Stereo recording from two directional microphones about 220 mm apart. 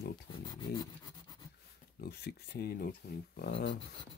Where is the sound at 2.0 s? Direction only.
50° left (ahead or behind).